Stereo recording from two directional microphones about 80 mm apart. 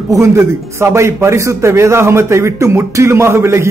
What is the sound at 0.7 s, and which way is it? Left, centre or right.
A man's voice, right.